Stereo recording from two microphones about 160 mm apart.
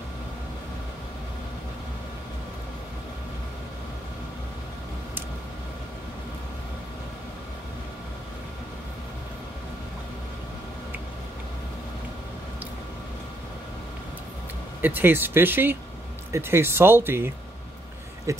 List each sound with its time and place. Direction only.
14.8 s speech: 10° right (ahead or behind)